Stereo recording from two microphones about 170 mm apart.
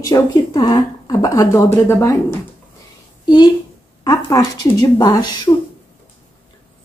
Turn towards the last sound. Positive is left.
turn(degrees=20)  # may be behind; listen again after turning